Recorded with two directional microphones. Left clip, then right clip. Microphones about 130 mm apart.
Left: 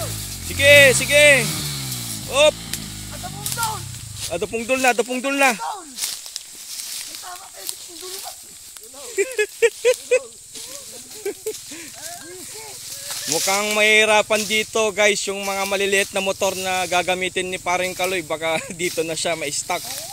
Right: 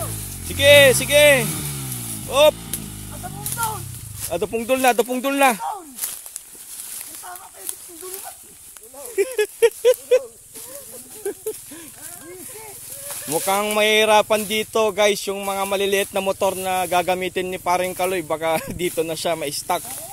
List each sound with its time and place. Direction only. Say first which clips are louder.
0.5 s speech: even; 15° right (ahead or behind)
1.5 s chainsaw: left 4 dB; centre (ahead or behind)
2.8 s a sound: left 2 dB; centre (ahead or behind)
4.3 s speech: right 1 dB; 15° right (ahead or behind)
9.1 s speech: even; 10° right (ahead or behind)
11.2 s a sound: even; 5° left (ahead or behind)
13.3 s speech: even; 15° right (ahead or behind)
19.8 s speech: left 5 dB; 5° right (ahead or behind)